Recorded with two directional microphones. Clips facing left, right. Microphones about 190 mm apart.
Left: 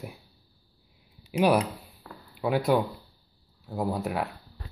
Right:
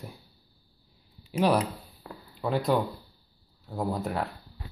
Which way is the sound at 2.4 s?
10° left (ahead or behind).